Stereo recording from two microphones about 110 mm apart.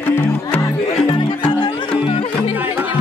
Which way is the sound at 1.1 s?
45° left (ahead or behind).